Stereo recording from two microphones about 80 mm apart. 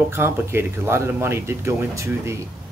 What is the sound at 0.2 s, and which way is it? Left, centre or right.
Speech, right.